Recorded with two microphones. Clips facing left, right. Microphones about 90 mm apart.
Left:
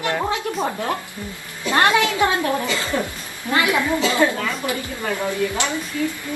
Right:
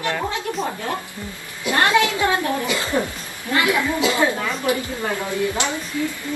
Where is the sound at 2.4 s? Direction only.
15° right (ahead or behind).